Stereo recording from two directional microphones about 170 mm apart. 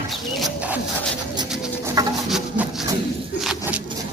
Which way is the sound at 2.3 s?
Centre (ahead or behind).